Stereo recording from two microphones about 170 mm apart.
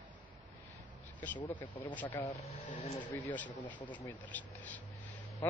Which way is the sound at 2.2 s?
40° left (ahead or behind).